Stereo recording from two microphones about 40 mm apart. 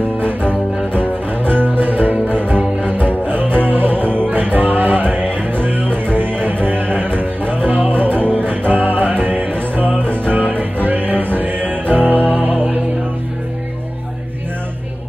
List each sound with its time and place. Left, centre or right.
0.2 s music: left
1.4 s music: right